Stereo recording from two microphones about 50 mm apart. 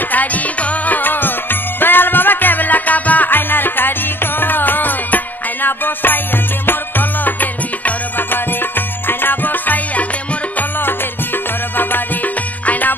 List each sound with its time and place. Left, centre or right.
0.1 s music: left
11.7 s music: left